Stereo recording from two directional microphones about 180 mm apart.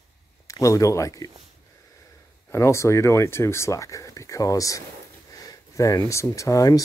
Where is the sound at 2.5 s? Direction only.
15° left (ahead or behind).